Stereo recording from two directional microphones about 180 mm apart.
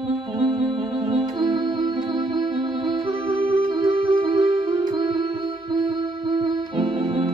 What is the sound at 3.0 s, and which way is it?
Music, 30° right (ahead or behind).